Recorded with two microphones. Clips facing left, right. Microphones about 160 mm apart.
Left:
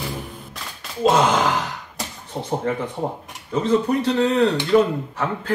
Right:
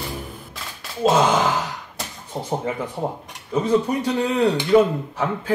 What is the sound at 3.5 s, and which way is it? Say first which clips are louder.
Speech: even; 10° right (ahead or behind).